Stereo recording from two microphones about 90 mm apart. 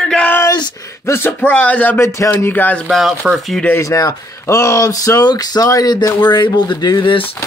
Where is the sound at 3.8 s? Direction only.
40° left (ahead or behind); by 7.3 s 70° left (ahead or behind).